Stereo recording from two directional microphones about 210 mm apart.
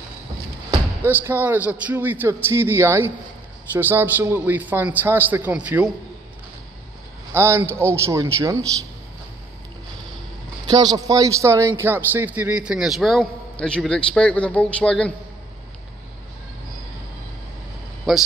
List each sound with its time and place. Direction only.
1.0 s a man's voice: 10° right (ahead or behind)
7.3 s a man's voice: 10° right (ahead or behind)
10.7 s a man's voice: 20° right (ahead or behind); by 15.1 s 5° left (ahead or behind)